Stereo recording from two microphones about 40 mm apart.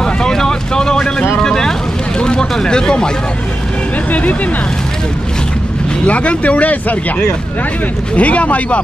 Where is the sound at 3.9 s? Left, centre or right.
Left.